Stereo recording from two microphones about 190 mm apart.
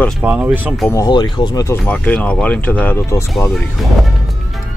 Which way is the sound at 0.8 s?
20° left (ahead or behind).